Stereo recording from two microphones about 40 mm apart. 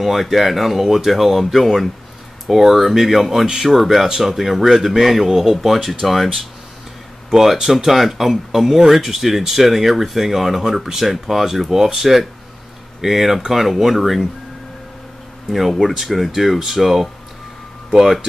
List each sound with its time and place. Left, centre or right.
0.0 s a man's voice: centre
7.2 s a man's voice: centre
15.5 s a man's voice: centre